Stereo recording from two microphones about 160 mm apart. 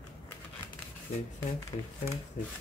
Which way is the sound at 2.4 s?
55° left (ahead or behind).